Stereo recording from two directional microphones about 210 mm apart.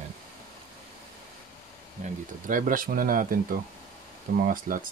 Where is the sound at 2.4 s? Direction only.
40° right (ahead or behind).